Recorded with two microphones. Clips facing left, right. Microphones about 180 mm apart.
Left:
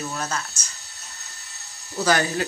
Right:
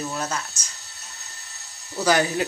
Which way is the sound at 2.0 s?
15° right (ahead or behind).